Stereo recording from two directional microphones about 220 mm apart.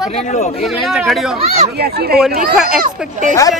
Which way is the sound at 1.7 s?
45° right (ahead or behind).